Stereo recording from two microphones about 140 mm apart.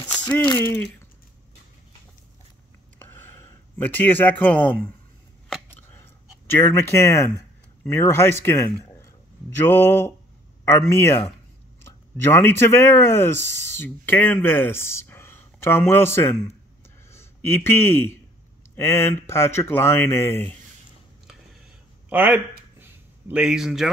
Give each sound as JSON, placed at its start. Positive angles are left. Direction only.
{"t": 0.1, "sound": "a sound", "side_deg": 10}
{"t": 0.4, "sound": "speech", "side_deg": 20}
{"t": 3.3, "sound": "speech", "side_deg": 10}
{"t": 6.5, "sound": "a man's voice", "side_deg": 15}
{"t": 22.1, "sound": "speech", "side_deg": -15}
{"t": 22.8, "sound": "a sound", "side_deg": -15}
{"t": 23.4, "sound": "speech", "side_deg": -5}